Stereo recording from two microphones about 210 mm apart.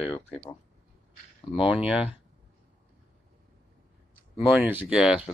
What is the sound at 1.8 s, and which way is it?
Speech, 5° right (ahead or behind).